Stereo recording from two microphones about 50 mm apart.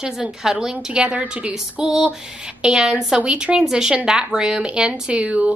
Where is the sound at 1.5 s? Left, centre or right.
Centre.